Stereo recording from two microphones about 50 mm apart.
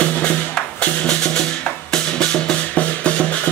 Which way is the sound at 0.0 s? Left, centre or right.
Left.